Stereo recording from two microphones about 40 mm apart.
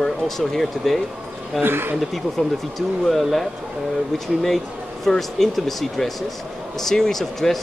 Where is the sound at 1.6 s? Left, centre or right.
Right.